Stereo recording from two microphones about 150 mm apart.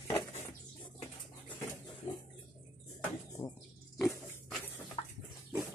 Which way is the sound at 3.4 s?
30° left (ahead or behind).